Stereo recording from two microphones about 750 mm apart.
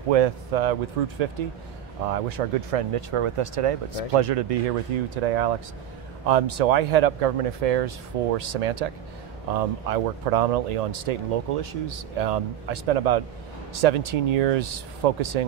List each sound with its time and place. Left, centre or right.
0.1 s speech: right